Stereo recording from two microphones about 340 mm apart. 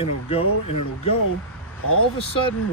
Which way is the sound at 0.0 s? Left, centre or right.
Centre.